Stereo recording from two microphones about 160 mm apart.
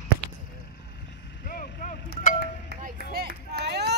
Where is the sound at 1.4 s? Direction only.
60° left (ahead or behind).